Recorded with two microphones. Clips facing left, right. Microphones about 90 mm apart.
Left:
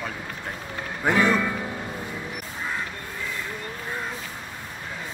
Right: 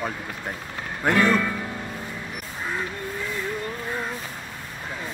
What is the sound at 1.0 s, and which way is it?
Speech, 5° left (ahead or behind).